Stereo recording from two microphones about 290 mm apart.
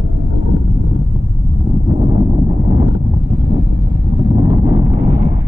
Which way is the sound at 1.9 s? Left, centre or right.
Centre.